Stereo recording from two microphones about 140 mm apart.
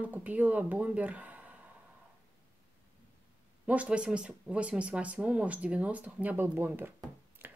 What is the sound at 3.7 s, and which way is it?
Speech, 10° right (ahead or behind).